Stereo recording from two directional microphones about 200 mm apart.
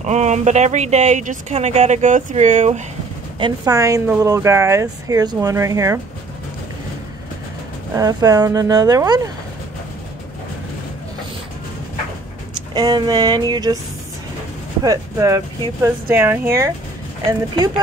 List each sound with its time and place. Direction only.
0.0 s speech: 35° right (ahead or behind)
3.3 s speech: 20° right (ahead or behind)
7.9 s speech: 20° right (ahead or behind)
12.7 s a sound: 20° right (ahead or behind)
14.8 s speech: 15° right (ahead or behind)